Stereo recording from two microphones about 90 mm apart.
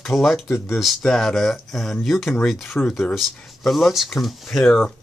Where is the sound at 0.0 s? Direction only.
Centre (ahead or behind).